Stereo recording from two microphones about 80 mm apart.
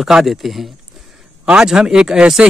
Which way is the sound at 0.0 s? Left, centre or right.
Centre.